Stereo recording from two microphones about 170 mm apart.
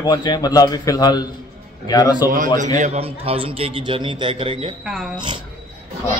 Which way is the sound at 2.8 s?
35° right (ahead or behind).